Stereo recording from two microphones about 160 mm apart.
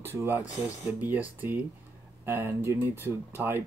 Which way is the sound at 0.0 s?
15° right (ahead or behind).